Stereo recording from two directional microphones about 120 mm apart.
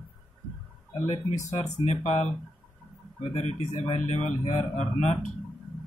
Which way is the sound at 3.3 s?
80° left.